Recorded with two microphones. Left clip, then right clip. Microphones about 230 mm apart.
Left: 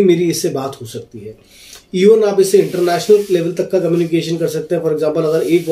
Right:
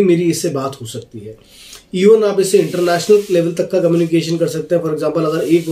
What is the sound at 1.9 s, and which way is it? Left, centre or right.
Speech, centre.